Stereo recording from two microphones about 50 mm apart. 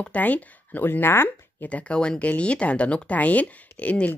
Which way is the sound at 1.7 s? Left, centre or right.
Centre.